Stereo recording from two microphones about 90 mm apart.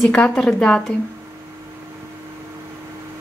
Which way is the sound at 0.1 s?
10° left (ahead or behind).